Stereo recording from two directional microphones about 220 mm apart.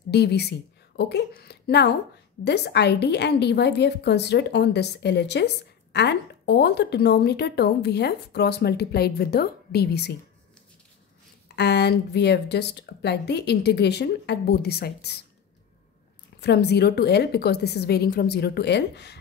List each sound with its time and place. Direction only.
0.1 s a woman's voice: 50° left (ahead or behind)
11.4 s a woman's voice: 50° left (ahead or behind)
16.3 s a woman's voice: 50° left (ahead or behind)